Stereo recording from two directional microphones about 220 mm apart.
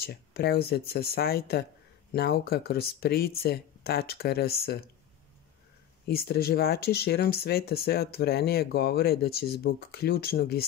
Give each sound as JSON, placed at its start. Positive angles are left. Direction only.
{"t": 0.0, "sound": "speech", "side_deg": 45}
{"t": 6.0, "sound": "speech", "side_deg": 45}